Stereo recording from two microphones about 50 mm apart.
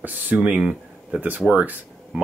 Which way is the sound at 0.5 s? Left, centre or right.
Centre.